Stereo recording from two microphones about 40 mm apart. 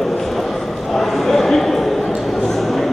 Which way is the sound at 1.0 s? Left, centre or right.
Centre.